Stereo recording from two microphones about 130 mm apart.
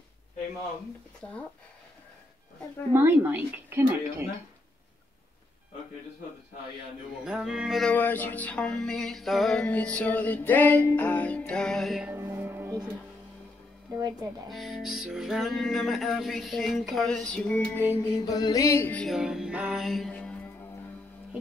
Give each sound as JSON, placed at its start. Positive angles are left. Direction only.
{"t": 1.2, "sound": "music", "side_deg": 5}
{"t": 2.9, "sound": "speech", "side_deg": -15}
{"t": 7.2, "sound": "music", "side_deg": -5}
{"t": 7.9, "sound": "music", "side_deg": 15}
{"t": 12.1, "sound": "music", "side_deg": -20}
{"t": 13.9, "sound": "speech", "side_deg": -30}
{"t": 14.5, "sound": "music", "side_deg": 0}
{"t": 18.0, "sound": "music", "side_deg": 30}
{"t": 18.9, "sound": "music", "side_deg": 0}